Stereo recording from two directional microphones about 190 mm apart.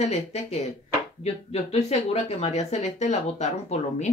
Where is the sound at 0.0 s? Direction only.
35° left (ahead or behind).